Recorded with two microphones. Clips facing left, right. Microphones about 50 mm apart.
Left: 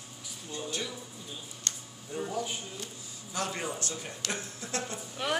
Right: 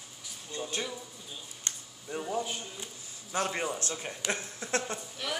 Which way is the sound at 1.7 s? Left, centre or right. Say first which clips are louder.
Left 1 dB; centre.